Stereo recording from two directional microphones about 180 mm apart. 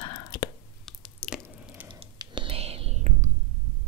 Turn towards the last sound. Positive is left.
turn(degrees=-40)  # may be behind; listen again after turning